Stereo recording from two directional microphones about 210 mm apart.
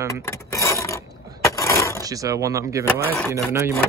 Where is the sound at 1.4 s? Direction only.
15° left (ahead or behind).